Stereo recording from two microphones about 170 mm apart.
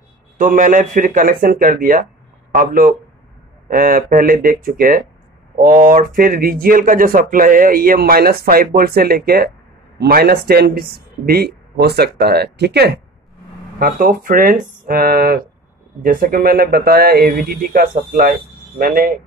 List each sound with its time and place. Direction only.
0.4 s speech: 50° right (ahead or behind); by 13.0 s 75° right (ahead or behind)
13.7 s speech: 60° right (ahead or behind)